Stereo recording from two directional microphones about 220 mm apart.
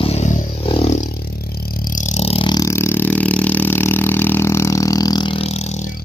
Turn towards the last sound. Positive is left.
turn(degrees=30)  # may be behind; listen again after turning